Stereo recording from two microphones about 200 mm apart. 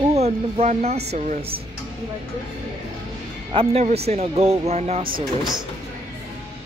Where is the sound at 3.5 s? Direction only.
30° right (ahead or behind).